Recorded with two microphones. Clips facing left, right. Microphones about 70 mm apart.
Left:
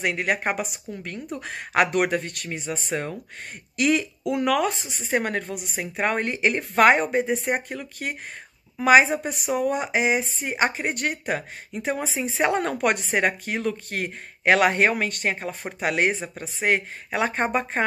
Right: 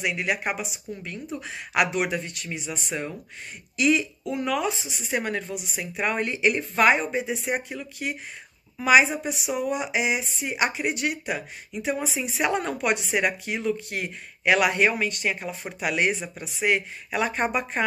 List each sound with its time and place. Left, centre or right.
0.0 s a woman's voice: left
4.3 s speech: left
4.9 s a woman's voice: left